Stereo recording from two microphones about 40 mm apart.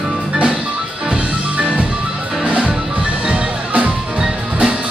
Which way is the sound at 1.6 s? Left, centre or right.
Right.